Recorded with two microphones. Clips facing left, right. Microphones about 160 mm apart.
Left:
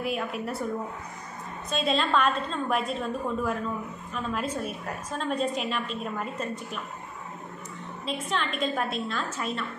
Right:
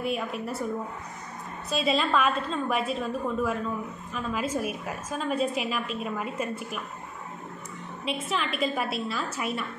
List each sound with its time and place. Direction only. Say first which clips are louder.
0.0 s a woman's voice: even; centre (ahead or behind)
1.7 s a woman's voice: even; 5° right (ahead or behind)
8.0 s a woman's voice: even; 5° right (ahead or behind)